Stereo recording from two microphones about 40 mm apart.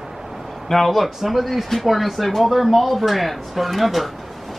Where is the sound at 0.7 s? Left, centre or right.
Centre.